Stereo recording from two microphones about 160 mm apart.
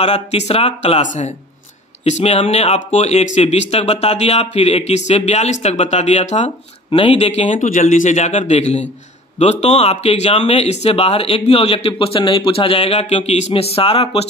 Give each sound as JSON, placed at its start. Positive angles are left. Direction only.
{"t": 0.0, "sound": "speech", "side_deg": 45}
{"t": 2.0, "sound": "speech", "side_deg": 45}